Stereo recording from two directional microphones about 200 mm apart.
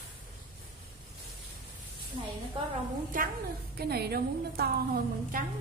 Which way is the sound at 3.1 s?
45° right (ahead or behind).